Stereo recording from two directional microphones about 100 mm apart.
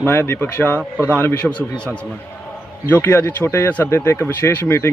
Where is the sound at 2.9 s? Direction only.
25° left (ahead or behind).